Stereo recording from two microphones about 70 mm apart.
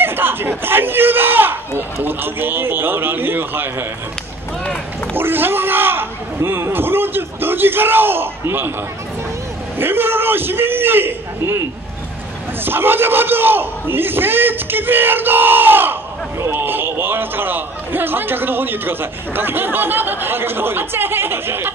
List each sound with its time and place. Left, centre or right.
0.0 s a sound: right
2.0 s a man's voice: right
5.1 s a man's voice: right
9.8 s a man's voice: right
12.6 s a man's voice: right